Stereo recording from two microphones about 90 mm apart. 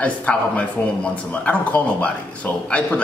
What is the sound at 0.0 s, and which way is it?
Speech, 15° left (ahead or behind).